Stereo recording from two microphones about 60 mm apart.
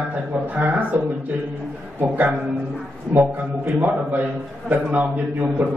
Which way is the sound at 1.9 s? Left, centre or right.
Right.